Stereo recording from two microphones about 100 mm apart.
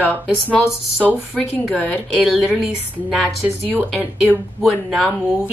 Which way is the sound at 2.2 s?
5° right (ahead or behind).